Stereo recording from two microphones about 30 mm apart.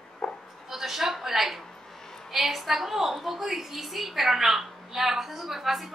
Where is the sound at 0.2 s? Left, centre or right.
Centre.